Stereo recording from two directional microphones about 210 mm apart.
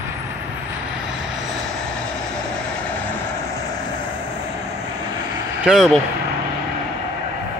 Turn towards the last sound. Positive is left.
turn(degrees=0)  # may be behind; listen again after turning